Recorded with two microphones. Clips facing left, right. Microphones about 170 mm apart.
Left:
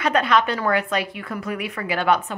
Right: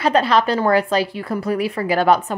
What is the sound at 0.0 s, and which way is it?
Speech, 30° right (ahead or behind).